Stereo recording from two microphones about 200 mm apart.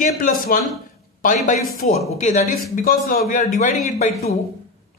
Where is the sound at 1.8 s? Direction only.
40° left (ahead or behind).